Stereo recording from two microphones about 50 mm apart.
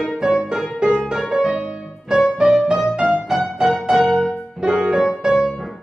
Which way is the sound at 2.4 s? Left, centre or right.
Centre.